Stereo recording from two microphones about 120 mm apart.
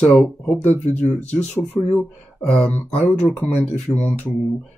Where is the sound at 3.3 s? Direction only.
20° left (ahead or behind).